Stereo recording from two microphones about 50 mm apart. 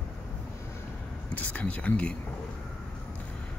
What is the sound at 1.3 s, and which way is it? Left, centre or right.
Speech, left.